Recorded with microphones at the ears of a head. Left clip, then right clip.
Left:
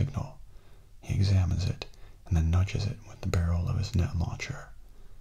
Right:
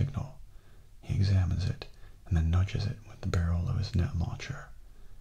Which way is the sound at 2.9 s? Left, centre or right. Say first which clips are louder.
Left 2 dB; centre.